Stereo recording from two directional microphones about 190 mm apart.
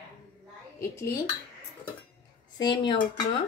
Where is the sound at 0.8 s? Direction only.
15° left (ahead or behind).